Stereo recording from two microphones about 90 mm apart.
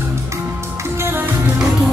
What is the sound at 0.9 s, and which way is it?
Music, 25° right (ahead or behind).